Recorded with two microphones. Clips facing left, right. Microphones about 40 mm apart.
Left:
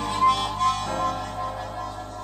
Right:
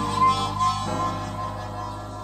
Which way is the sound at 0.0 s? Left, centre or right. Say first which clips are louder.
Right 1 dB; centre.